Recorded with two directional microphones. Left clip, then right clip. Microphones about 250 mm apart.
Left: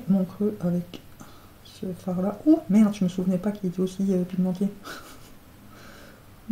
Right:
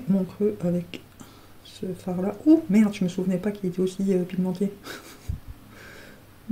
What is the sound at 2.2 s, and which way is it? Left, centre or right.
Speech, right.